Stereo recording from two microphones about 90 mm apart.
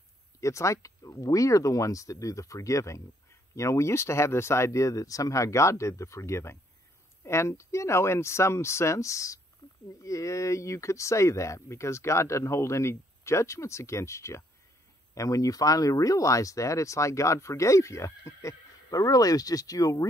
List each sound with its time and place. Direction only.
0.4 s speech: 35° left (ahead or behind)
9.6 s a sound: 50° left (ahead or behind)
10.0 s speech: 35° left (ahead or behind)